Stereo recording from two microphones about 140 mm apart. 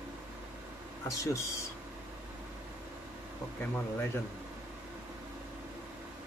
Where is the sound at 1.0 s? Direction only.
20° left (ahead or behind).